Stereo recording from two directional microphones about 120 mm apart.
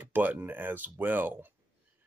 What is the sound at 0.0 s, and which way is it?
Speech, 15° right (ahead or behind).